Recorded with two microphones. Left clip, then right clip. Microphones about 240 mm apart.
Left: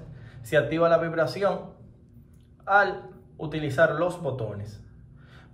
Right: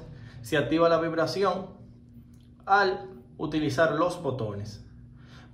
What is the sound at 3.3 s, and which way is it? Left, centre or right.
Speech, centre.